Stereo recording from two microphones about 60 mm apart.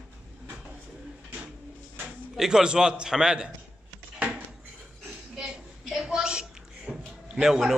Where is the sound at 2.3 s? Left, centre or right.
Centre.